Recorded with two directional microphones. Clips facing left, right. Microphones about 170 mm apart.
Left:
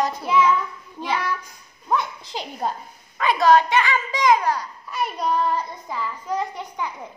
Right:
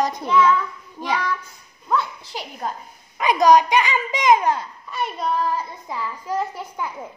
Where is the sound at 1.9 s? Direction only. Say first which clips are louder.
Right 1 dB; 20° left (ahead or behind).